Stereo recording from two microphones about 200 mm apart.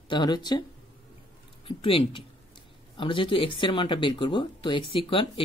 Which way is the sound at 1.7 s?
25° left (ahead or behind).